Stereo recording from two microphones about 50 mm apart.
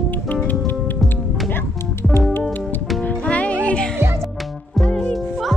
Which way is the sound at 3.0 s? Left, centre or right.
Left.